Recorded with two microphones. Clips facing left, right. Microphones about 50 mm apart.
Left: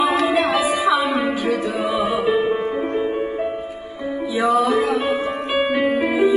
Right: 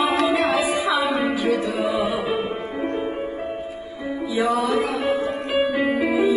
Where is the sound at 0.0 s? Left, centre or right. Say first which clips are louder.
Left 2 dB; left.